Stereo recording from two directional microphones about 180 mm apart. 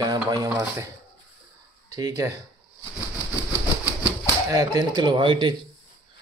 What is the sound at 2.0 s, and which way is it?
Speech, 20° right (ahead or behind).